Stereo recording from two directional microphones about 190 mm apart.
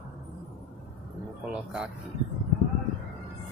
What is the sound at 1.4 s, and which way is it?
Speech, 5° right (ahead or behind).